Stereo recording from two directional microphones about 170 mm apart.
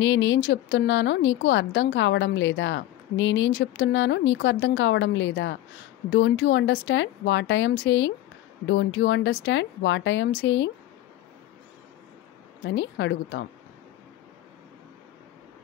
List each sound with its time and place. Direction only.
0.0 s a woman's voice: 90° left
12.7 s a woman's voice: 90° left